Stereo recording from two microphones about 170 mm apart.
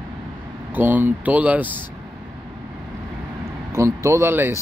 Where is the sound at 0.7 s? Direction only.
10° right (ahead or behind).